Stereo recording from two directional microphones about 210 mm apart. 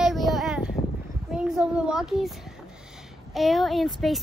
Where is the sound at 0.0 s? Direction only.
Centre (ahead or behind).